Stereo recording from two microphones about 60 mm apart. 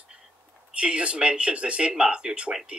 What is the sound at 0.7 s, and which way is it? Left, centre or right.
Speech, centre.